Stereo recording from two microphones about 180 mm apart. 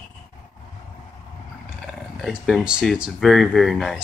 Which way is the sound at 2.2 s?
Centre (ahead or behind).